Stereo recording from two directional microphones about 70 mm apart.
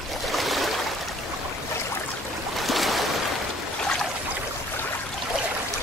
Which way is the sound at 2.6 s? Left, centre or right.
Centre.